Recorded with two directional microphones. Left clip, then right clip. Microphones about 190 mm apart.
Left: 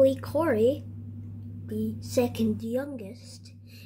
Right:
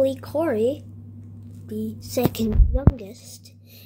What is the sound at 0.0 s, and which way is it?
A woman's voice, 5° right (ahead or behind).